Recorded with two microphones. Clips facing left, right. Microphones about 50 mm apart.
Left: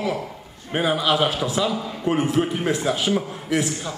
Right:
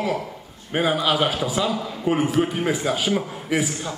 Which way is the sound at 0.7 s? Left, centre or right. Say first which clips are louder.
Even; centre.